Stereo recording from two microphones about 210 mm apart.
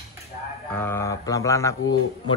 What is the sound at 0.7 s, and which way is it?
Speech, 10° left (ahead or behind).